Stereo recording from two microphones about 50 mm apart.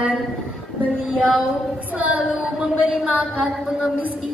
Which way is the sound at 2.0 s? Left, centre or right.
Right.